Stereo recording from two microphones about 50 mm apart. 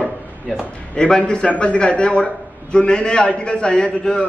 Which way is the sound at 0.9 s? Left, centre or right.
Centre.